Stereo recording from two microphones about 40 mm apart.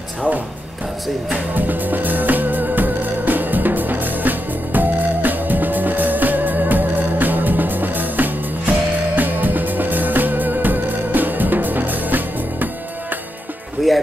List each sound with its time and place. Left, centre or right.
1.5 s music: right
13.9 s speech: centre